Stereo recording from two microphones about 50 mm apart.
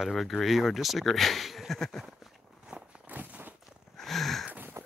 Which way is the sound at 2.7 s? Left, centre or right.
Right.